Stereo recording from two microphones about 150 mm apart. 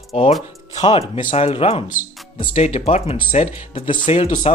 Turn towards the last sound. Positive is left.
turn(degrees=40)  # may be behind; listen again after turning